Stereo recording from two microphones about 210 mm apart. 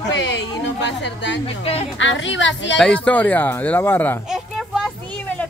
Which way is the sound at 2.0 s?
65° left (ahead or behind).